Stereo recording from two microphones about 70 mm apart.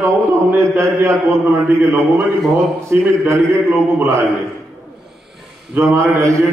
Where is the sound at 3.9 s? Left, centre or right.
Right.